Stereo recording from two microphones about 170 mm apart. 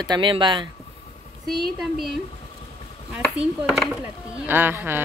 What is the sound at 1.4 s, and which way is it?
Speech, centre (ahead or behind).